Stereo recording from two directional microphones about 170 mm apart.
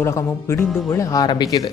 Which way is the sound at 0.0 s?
15° left (ahead or behind).